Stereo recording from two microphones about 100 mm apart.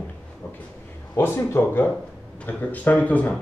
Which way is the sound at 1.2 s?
25° left (ahead or behind).